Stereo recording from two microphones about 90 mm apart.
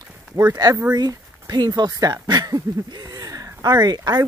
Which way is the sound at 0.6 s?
45° right (ahead or behind).